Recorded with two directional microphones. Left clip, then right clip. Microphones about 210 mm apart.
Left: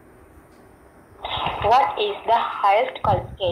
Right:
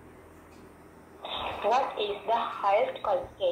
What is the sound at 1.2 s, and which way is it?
Speech, 35° left (ahead or behind).